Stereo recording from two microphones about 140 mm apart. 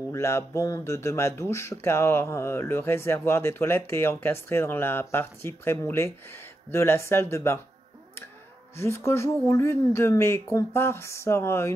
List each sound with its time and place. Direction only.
0.1 s speech: 20° left (ahead or behind)
8.7 s speech: 20° left (ahead or behind)